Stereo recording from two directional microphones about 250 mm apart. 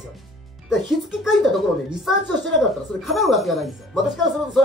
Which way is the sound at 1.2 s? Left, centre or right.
Centre.